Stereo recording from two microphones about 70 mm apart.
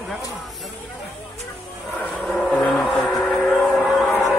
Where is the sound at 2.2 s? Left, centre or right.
Centre.